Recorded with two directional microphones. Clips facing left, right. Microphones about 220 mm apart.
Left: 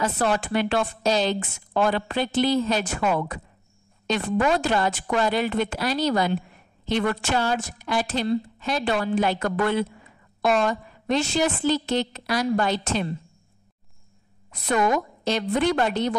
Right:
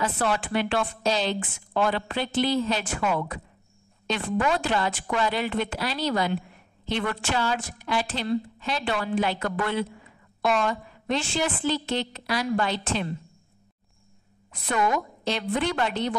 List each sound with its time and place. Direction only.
0.0 s a woman's voice: 40° left (ahead or behind)
14.5 s a woman's voice: 40° left (ahead or behind)